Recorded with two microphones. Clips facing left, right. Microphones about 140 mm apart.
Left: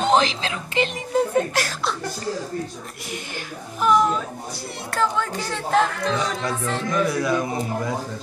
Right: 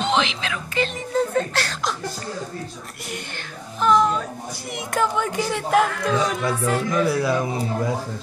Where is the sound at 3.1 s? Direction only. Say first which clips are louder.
Left 2 dB; 10° left (ahead or behind).